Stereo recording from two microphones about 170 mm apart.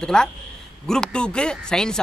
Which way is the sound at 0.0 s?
5° left (ahead or behind).